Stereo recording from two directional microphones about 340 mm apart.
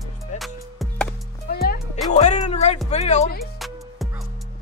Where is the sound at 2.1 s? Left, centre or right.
Centre.